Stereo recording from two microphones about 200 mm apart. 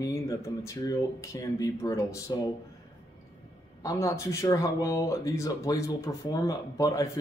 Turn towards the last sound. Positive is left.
turn(degrees=15)  # may be behind; listen again after turning